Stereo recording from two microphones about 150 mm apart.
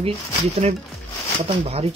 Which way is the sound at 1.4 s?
40° right (ahead or behind).